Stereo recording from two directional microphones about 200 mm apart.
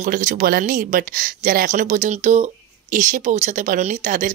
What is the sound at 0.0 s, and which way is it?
Speech, 40° right (ahead or behind).